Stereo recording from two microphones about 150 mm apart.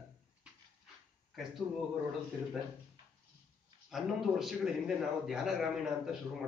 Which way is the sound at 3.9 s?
Centre (ahead or behind).